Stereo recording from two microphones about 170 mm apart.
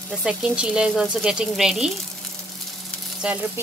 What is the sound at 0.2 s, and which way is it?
Speech, 5° right (ahead or behind).